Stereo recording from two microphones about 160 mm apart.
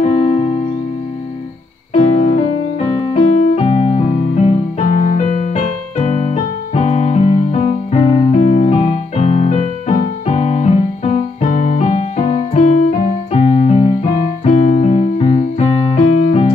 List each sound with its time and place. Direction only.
0.0 s music: 45° left (ahead or behind)
2.0 s music: 40° left (ahead or behind)
3.1 s keyboard: 40° left (ahead or behind)
9.9 s music: 45° left (ahead or behind)
11.5 s keyboard: 55° left (ahead or behind); by 14.1 s 35° left (ahead or behind)
14.4 s electric piano: 45° left (ahead or behind)